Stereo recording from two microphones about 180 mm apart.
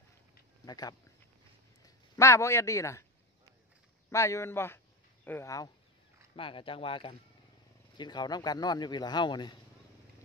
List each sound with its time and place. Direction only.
0.7 s a man's voice: 20° left (ahead or behind)
2.1 s a man's voice: 15° left (ahead or behind)
4.1 s speech: 15° left (ahead or behind)
6.3 s a man's voice: 30° left (ahead or behind)